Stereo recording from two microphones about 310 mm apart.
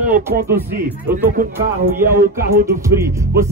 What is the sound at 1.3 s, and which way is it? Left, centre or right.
Speech, right.